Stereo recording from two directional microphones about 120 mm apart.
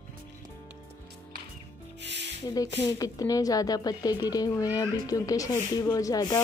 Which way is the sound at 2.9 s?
30° left (ahead or behind).